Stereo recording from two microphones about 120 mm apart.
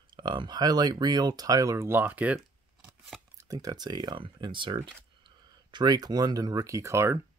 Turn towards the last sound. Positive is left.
turn(degrees=-20)  # may be behind; listen again after turning